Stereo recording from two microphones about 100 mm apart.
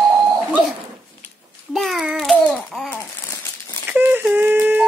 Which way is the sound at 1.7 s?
Centre (ahead or behind).